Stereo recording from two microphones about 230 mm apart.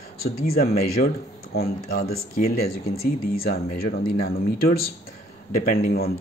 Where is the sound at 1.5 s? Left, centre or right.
Left.